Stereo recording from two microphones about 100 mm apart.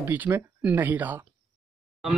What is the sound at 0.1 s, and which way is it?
Speech, 15° right (ahead or behind).